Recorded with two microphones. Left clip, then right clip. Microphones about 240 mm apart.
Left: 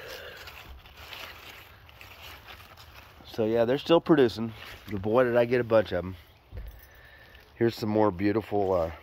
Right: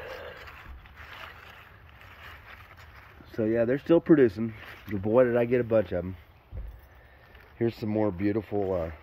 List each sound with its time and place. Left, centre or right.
0.0 s a sound: centre
3.3 s speech: centre
7.6 s speech: centre
8.5 s speech: left